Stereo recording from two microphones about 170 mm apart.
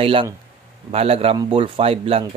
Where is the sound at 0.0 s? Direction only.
30° right (ahead or behind).